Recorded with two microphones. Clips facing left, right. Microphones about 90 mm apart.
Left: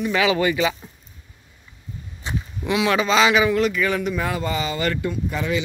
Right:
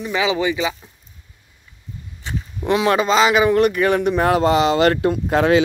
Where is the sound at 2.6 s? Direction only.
40° right (ahead or behind).